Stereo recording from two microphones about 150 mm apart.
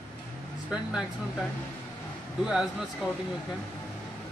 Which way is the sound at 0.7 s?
5° right (ahead or behind).